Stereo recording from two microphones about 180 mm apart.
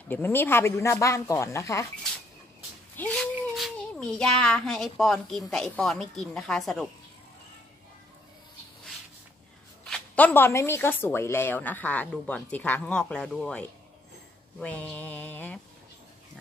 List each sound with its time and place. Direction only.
0.1 s a woman's voice: 10° left (ahead or behind)
3.0 s a child's voice: 5° left (ahead or behind)
9.8 s a woman's voice: 5° left (ahead or behind)